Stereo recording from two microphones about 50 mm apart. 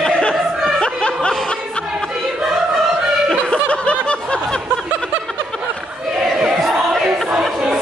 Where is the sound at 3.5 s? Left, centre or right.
Left.